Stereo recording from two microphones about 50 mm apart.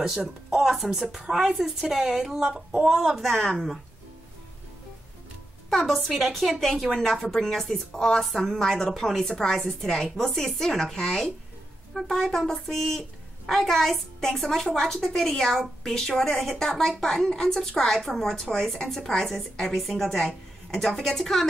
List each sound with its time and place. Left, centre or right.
0.5 s a woman's voice: centre
3.1 s a woman's voice: centre
5.7 s a woman's voice: centre